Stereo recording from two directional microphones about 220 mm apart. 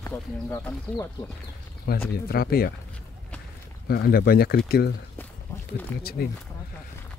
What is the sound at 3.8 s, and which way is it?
Speech, 45° left (ahead or behind).